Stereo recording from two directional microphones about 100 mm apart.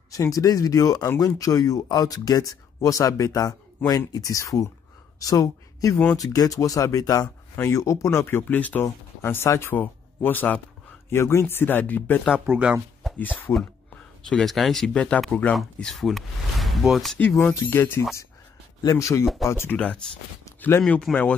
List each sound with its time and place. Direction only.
0.1 s speech: 35° left (ahead or behind); by 12.4 s 15° left (ahead or behind)
12.4 s speech: 10° right (ahead or behind)
13.0 s a sound: centre (ahead or behind)
13.5 s speech: 25° left (ahead or behind)
14.3 s speech: centre (ahead or behind)
17.6 s speech: 25° left (ahead or behind)
18.8 s speech: 35° left (ahead or behind)
20.8 s speech: 10° left (ahead or behind)